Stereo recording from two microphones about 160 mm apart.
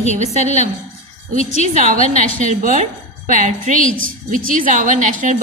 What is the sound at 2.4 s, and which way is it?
A woman's voice, 50° right (ahead or behind).